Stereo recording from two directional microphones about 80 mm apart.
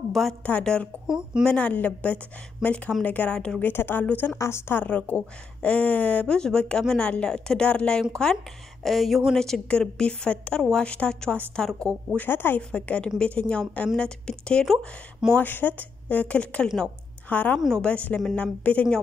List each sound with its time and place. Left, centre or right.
0.1 s a woman's voice: centre
0.4 s a woman's voice: centre
1.0 s speech: centre
1.4 s a woman's voice: centre
3.6 s speech: left
4.4 s a woman's voice: left
4.8 s a woman's voice: centre
12.2 s speech: left
12.7 s a woman's voice: centre
15.3 s speech: left
16.6 s a woman's voice: centre
17.3 s a woman's voice: centre